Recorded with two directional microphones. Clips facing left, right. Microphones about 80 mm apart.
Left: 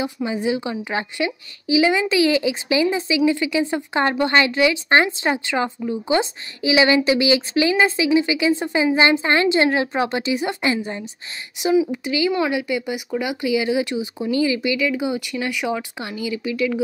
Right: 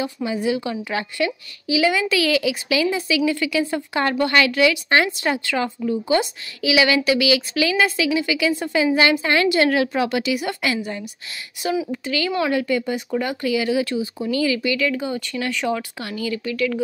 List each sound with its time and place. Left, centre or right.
0.0 s a woman's voice: left